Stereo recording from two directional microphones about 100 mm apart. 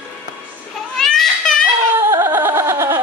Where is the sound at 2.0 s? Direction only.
25° right (ahead or behind).